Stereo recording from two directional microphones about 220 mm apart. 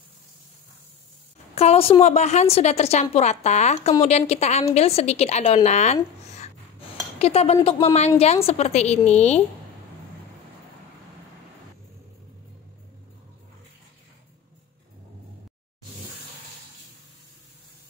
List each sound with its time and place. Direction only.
1.5 s a woman's voice: 30° left (ahead or behind)